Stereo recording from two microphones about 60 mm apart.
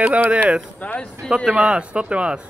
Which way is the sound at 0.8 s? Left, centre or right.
Left.